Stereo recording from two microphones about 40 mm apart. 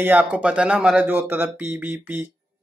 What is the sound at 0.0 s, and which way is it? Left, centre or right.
Speech, right.